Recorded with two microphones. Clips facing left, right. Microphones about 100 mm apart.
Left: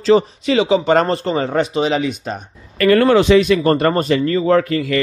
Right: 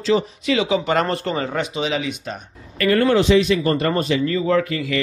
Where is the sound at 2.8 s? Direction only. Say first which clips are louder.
Left 4 dB; 80° left; by 5.0 s 45° left (ahead or behind).